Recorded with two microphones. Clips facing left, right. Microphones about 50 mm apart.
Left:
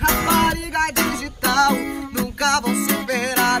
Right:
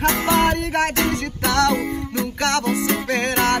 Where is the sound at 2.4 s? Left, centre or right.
Right.